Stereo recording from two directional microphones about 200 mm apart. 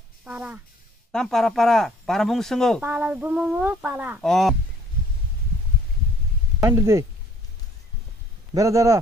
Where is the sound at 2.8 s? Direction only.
10° right (ahead or behind).